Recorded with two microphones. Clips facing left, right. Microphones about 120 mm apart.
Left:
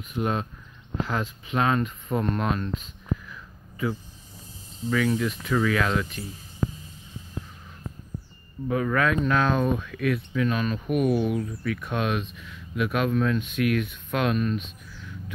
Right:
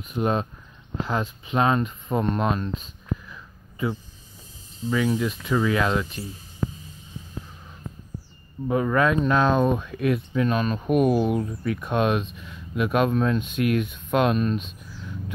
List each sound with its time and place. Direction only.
0.1 s speech: 25° right (ahead or behind)
4.8 s speech: 20° right (ahead or behind)
8.6 s speech: 25° right (ahead or behind)